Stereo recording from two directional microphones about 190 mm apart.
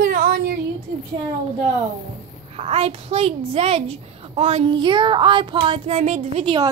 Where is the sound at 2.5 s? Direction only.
30° right (ahead or behind).